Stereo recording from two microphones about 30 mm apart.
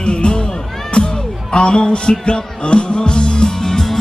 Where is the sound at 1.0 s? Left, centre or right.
Left.